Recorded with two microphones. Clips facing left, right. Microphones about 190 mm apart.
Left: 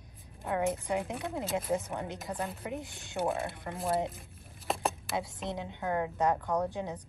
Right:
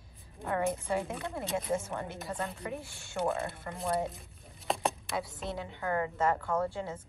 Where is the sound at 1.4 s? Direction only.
Centre (ahead or behind).